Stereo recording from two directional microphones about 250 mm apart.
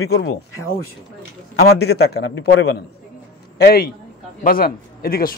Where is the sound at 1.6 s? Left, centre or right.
Left.